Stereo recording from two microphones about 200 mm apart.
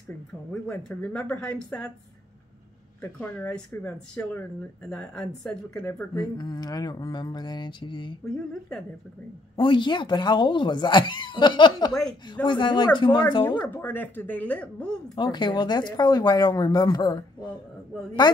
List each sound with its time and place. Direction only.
0.5 s speech: 5° left (ahead or behind)
3.0 s speech: 10° left (ahead or behind)
6.1 s speech: 20° left (ahead or behind)
9.6 s speech: 25° left (ahead or behind)
11.9 s speech: 5° left (ahead or behind)
12.4 s speech: 25° left (ahead or behind)
13.7 s speech: 10° left (ahead or behind)
15.1 s speech: 25° left (ahead or behind)